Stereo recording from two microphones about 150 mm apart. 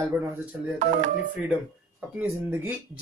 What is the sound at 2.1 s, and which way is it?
Speech, 10° right (ahead or behind).